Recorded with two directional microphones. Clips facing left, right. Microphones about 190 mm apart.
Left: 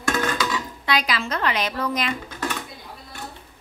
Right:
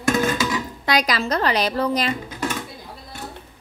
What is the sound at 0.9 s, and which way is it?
A woman's voice, 40° right (ahead or behind).